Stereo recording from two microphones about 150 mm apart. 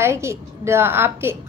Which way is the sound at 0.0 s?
20° right (ahead or behind).